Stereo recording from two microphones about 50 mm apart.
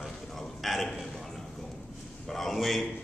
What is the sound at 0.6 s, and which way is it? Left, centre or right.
Speech, centre.